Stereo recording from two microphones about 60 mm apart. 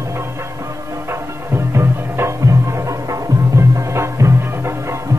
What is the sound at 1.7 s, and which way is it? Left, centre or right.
Music, right.